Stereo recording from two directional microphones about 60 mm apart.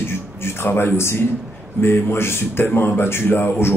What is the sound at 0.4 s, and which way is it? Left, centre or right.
A man's voice, left.